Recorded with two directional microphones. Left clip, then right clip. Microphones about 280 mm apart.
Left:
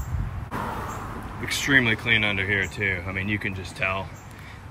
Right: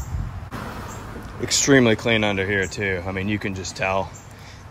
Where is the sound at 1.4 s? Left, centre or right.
Centre.